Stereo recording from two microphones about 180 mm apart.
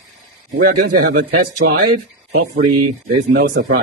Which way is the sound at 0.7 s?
50° right (ahead or behind).